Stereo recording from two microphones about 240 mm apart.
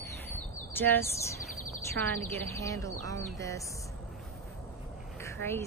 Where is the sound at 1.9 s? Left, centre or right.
Centre.